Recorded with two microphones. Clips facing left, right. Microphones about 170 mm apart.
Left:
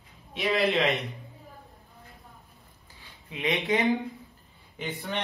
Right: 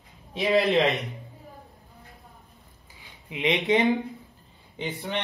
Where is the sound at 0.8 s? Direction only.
Centre (ahead or behind).